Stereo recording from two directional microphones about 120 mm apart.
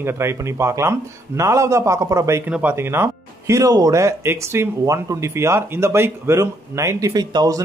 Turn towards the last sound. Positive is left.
turn(degrees=-35)  # may be behind; listen again after turning